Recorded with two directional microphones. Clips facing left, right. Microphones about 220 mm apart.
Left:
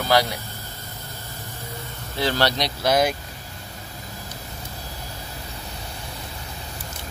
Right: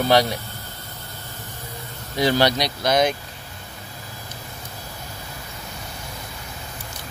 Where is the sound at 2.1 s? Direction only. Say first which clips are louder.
Right 4 dB; 15° right (ahead or behind).